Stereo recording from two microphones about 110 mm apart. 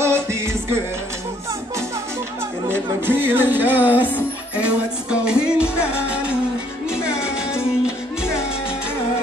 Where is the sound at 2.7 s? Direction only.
20° right (ahead or behind).